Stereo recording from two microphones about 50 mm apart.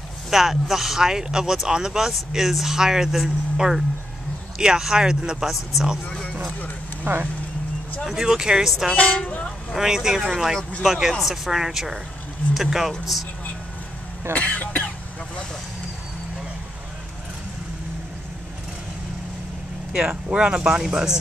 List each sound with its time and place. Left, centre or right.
0.3 s speech: centre
7.1 s speech: right
8.0 s speech: centre
8.9 s speech: left
9.8 s speech: centre
14.3 s cough: left
19.9 s speech: centre